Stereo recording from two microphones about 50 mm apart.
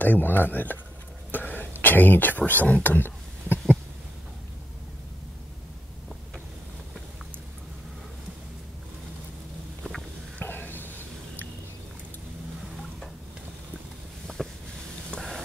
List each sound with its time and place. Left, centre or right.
0.0 s speech: left
1.3 s throat clearing: left
1.8 s speech: left
10.4 s a sound: left
14.2 s vehicle: centre
15.0 s a sound: centre